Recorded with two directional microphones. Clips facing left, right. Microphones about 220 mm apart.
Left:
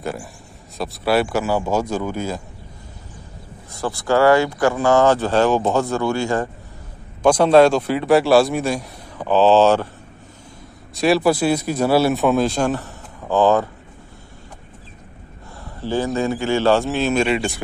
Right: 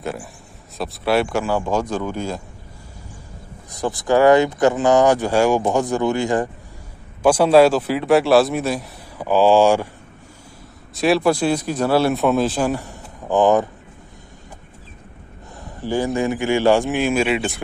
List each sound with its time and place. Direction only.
0.0 s speech: centre (ahead or behind)
3.7 s speech: 20° right (ahead or behind)
11.0 s speech: centre (ahead or behind); by 13.7 s 20° right (ahead or behind)
15.6 s speech: 15° right (ahead or behind)